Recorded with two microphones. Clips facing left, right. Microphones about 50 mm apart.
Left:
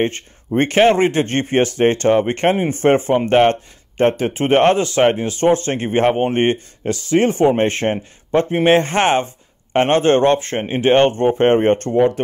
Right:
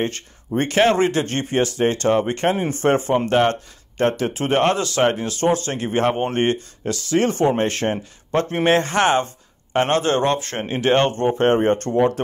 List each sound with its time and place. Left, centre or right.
0.0 s speech: left
8.3 s speech: centre
8.6 s speech: left
10.5 s speech: left